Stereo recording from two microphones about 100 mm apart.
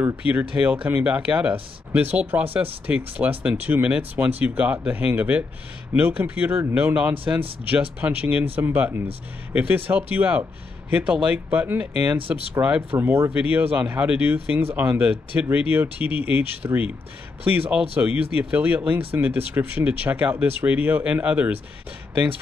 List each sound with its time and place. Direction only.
0.3 s speech: 15° right (ahead or behind)